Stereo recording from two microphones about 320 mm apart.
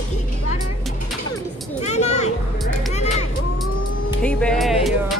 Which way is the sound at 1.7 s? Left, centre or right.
Left.